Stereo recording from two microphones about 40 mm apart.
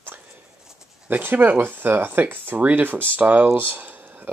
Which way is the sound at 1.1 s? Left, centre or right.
Right.